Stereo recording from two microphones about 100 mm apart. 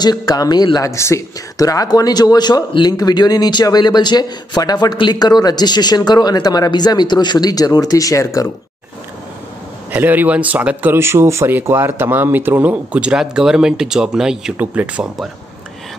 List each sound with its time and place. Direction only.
0.0 s speech: 40° left (ahead or behind)
9.8 s speech: 20° right (ahead or behind)